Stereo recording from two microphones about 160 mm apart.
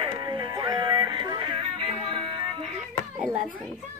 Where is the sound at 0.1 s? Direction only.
25° right (ahead or behind).